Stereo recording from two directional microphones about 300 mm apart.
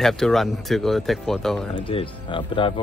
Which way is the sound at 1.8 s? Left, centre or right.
Centre.